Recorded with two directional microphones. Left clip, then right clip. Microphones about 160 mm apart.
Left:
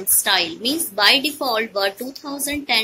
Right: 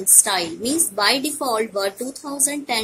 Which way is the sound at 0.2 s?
15° right (ahead or behind).